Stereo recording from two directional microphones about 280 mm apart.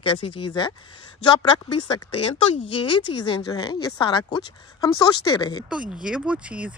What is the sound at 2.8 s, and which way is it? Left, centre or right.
Speech, left.